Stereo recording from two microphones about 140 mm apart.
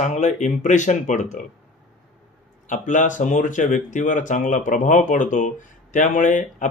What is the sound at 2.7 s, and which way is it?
Speech, 60° left (ahead or behind).